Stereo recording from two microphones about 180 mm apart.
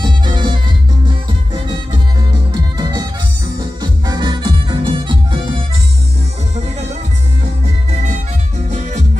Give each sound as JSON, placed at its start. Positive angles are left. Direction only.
{"t": 0.0, "sound": "music", "side_deg": -25}
{"t": 8.6, "sound": "music", "side_deg": -40}